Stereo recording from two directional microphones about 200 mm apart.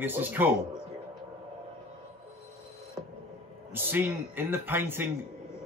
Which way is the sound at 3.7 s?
10° right (ahead or behind).